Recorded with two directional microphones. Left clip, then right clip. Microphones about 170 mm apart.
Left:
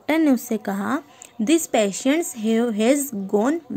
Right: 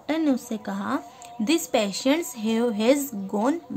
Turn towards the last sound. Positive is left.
turn(degrees=20)  # may be behind; listen again after turning